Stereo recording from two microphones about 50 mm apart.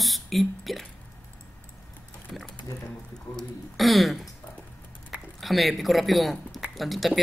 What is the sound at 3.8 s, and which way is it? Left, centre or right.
Speech, centre.